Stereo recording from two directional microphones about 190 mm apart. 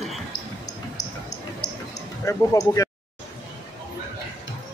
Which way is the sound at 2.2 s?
15° left (ahead or behind).